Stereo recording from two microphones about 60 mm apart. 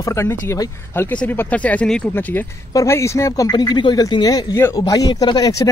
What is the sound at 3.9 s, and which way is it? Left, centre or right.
Speech, left.